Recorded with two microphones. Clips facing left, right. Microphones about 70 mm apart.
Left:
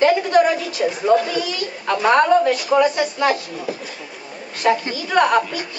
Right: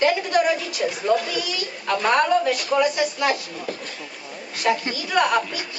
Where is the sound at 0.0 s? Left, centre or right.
Centre.